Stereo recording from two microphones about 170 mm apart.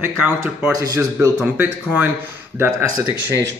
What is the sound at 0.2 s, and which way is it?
A man's voice, 10° right (ahead or behind).